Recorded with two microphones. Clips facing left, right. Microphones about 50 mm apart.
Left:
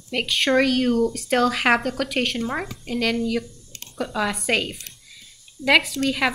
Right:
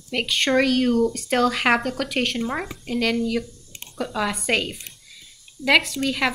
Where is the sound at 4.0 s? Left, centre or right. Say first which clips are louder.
Even; centre.